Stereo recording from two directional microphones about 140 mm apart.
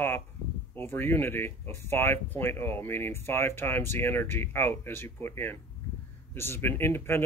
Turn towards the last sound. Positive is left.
turn(degrees=15)  # may be behind; listen again after turning